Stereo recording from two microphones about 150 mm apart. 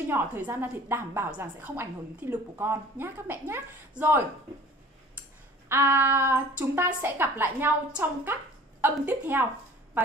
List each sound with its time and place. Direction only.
0.1 s a woman's voice: 15° right (ahead or behind)
5.7 s a woman's voice: 15° right (ahead or behind)